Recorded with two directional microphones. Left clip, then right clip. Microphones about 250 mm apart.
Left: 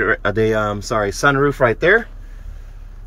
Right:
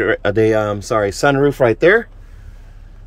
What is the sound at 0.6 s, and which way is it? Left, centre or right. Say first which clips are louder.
Speech: right 2 dB; right.